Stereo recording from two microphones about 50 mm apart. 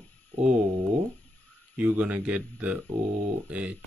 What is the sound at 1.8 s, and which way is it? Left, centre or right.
Speech, right.